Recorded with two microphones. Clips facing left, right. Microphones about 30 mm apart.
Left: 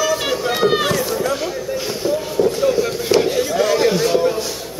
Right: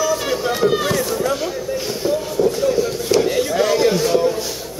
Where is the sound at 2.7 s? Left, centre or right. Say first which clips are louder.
Left 1 dB; centre.